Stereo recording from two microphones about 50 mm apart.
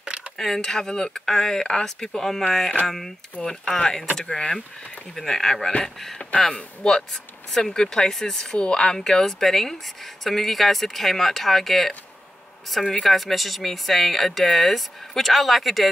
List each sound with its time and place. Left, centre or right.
0.0 s a sound: centre
0.4 s speech: centre
6.8 s speech: centre
13.0 s speech: centre